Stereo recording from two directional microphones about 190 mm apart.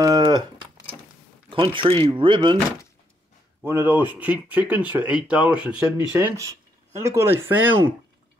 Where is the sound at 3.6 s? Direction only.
10° right (ahead or behind).